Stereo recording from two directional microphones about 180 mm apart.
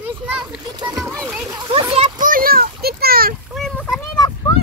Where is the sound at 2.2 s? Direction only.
50° right (ahead or behind).